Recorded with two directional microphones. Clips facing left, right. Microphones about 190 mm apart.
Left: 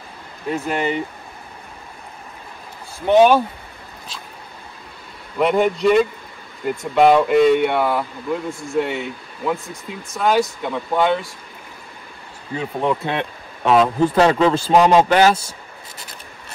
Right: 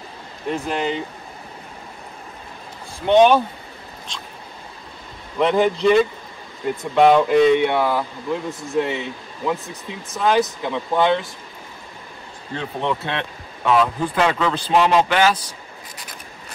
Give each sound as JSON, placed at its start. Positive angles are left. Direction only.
{"t": 0.7, "sound": "speech", "side_deg": 5}
{"t": 3.1, "sound": "speech", "side_deg": 5}
{"t": 5.4, "sound": "speech", "side_deg": 0}
{"t": 12.5, "sound": "speech", "side_deg": 10}
{"t": 13.7, "sound": "a man's voice", "side_deg": 30}